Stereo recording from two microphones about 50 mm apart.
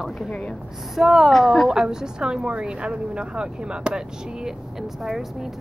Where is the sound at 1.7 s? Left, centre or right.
Centre.